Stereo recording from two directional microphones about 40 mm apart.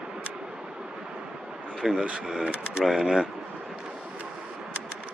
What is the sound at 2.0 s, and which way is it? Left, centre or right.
Speech, right.